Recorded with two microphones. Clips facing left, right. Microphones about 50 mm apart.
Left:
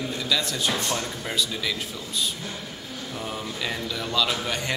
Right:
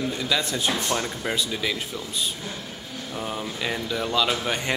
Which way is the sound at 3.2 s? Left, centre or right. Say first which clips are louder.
Right 2 dB; centre.